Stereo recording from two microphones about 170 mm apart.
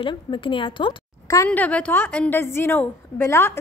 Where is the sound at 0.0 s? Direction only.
30° left (ahead or behind).